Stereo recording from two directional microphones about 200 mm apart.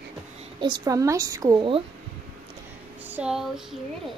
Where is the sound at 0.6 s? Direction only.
20° right (ahead or behind).